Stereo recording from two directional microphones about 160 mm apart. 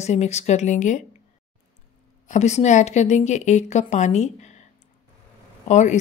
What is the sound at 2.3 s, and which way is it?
A woman's voice, 45° left (ahead or behind).